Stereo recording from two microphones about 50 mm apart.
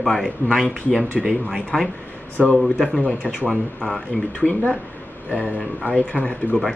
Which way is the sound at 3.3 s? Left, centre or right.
Centre.